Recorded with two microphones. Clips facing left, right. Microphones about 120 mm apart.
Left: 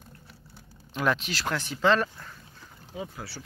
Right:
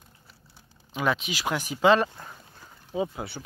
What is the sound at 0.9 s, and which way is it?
Speech, 5° right (ahead or behind).